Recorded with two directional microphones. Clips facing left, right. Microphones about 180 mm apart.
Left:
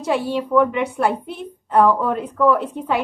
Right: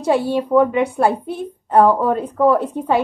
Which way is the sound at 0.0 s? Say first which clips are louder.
Right 4 dB; 30° right (ahead or behind).